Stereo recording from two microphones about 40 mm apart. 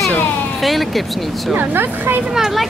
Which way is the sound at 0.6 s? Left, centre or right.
Centre.